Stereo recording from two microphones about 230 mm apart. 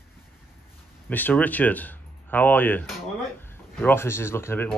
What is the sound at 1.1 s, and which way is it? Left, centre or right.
Speech, centre.